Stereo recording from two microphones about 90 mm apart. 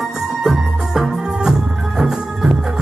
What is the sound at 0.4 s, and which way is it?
Music, 5° right (ahead or behind).